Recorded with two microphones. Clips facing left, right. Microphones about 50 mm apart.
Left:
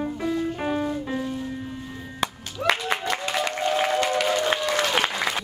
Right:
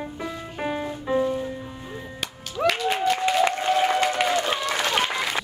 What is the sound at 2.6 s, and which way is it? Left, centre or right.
Music, right.